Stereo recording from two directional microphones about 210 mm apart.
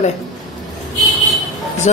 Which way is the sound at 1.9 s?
35° left (ahead or behind).